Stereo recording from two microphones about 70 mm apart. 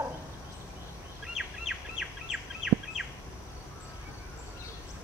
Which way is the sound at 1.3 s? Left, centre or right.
Centre.